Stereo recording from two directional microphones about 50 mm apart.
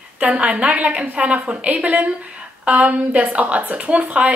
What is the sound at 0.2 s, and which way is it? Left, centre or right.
A woman's voice, right.